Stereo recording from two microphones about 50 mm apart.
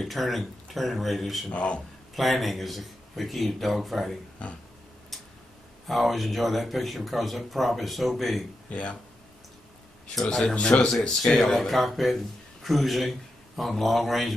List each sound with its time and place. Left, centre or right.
0.0 s speech: centre
1.5 s speech: left
2.1 s speech: centre
5.9 s speech: centre
8.6 s speech: left
10.4 s speech: left; by 14.3 s centre